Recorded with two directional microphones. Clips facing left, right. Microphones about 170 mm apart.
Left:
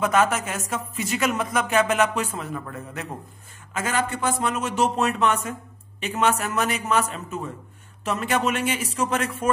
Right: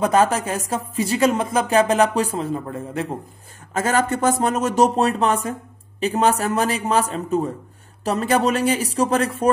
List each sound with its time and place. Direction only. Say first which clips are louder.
0.0 s a man's voice: right 4 dB; 35° right (ahead or behind)
3.7 s a man's voice: right 6 dB; 40° right (ahead or behind)